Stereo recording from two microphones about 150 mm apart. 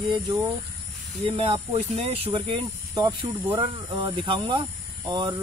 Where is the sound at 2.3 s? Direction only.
30° right (ahead or behind).